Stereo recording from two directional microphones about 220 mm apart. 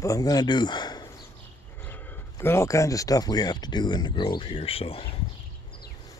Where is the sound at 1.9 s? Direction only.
10° left (ahead or behind); by 5.2 s 25° left (ahead or behind).